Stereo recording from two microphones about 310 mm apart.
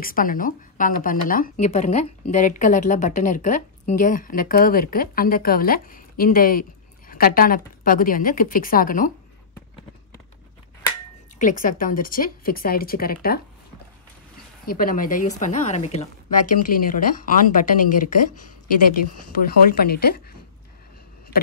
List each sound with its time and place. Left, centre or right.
0.0 s a woman's voice: left
11.3 s a woman's voice: left
14.7 s a woman's voice: left
19.7 s a woman's voice: left